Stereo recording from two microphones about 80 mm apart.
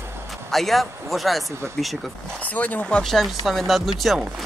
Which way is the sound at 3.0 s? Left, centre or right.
Centre.